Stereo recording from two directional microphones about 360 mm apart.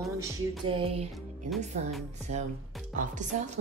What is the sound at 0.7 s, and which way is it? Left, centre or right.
Speech, centre.